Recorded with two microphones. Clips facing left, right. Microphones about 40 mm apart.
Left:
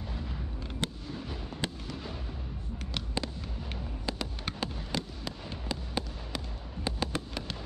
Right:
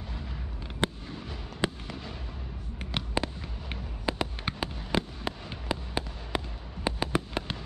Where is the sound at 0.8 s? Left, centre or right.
Right.